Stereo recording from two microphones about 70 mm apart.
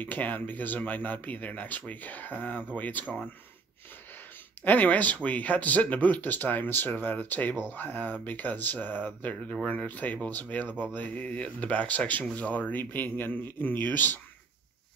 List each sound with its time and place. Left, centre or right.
0.0 s speech: left
4.6 s speech: left